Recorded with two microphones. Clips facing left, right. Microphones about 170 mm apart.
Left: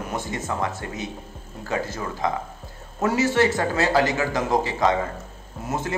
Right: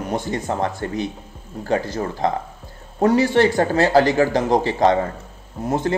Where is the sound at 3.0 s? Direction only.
35° right (ahead or behind).